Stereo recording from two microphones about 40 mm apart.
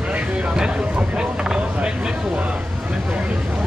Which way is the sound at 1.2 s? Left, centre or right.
Centre.